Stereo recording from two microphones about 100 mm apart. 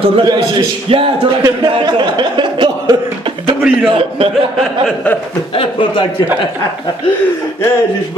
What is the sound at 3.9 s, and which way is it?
Speech, 65° right (ahead or behind).